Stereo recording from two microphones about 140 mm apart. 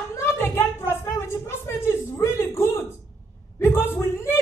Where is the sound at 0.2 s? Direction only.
15° left (ahead or behind).